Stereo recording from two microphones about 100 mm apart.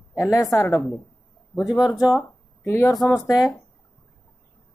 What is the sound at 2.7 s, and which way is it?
Speech, 25° left (ahead or behind).